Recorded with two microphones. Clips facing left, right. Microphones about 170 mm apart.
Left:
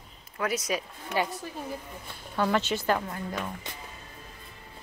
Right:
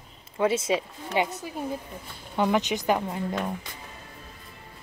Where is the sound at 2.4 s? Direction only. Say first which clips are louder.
Right 2 dB; 15° right (ahead or behind).